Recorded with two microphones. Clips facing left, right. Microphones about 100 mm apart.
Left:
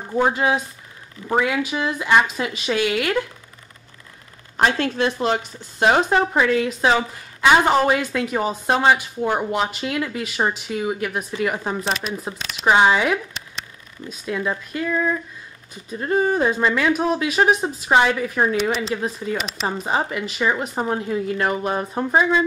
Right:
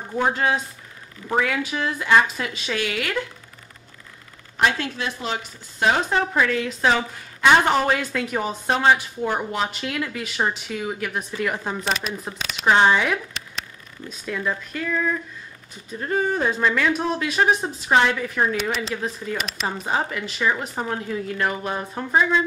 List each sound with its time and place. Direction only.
0.1 s speech: 10° left (ahead or behind)
4.7 s speech: 45° left (ahead or behind)
5.8 s a woman's voice: 30° left (ahead or behind)